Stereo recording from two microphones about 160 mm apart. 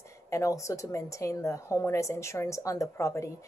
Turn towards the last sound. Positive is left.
turn(degrees=20)  # may be behind; listen again after turning